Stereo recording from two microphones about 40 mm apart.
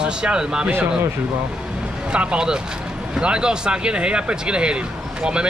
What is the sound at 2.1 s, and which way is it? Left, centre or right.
Speech, right.